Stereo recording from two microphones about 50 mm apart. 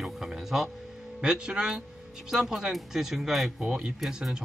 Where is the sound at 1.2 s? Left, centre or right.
Centre.